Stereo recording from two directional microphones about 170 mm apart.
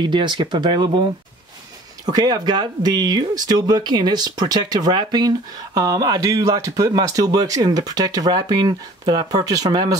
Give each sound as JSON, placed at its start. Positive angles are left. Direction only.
{"t": 0.0, "sound": "speech", "side_deg": -25}